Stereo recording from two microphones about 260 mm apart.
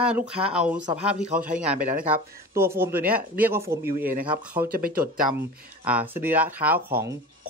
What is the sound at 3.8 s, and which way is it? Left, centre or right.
Speech, right.